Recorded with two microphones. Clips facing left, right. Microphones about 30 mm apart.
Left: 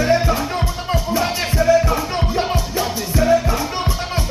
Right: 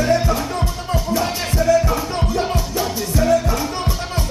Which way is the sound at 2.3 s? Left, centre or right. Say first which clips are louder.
Even; left.